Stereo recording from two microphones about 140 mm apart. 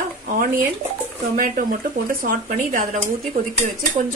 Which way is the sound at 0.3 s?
90° right.